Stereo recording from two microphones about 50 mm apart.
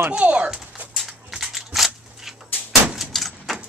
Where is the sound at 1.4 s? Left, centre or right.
Centre.